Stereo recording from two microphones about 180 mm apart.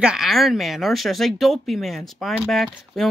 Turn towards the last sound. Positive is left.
turn(degrees=0)  # may be behind; listen again after turning